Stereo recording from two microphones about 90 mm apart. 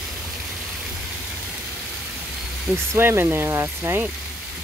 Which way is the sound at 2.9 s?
30° right (ahead or behind).